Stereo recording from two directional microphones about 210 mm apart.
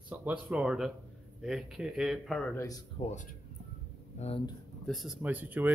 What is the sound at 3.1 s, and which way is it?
Speech, 35° left (ahead or behind).